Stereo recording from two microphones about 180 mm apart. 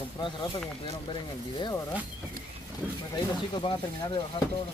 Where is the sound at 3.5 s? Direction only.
25° left (ahead or behind).